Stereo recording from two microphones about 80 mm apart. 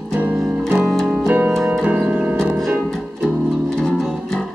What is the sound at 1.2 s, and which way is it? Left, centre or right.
Music, right.